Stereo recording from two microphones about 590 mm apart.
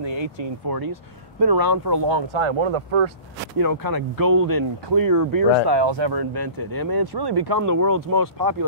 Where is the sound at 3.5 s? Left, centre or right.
Right.